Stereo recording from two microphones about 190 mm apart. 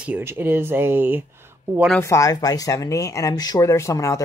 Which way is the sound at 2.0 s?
15° left (ahead or behind).